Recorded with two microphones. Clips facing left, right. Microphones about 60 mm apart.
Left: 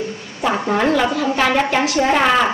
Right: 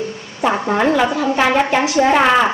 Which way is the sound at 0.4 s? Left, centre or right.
Centre.